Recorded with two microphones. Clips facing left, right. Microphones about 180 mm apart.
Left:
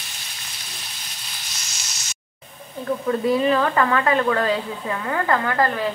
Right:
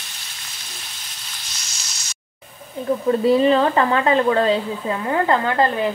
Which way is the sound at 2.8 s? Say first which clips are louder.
Right 4 dB; 30° right (ahead or behind).